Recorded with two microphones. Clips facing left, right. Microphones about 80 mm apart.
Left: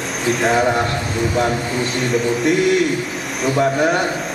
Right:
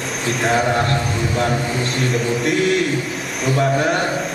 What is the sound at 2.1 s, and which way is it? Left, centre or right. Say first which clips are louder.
A man's voice: left 4 dB; centre.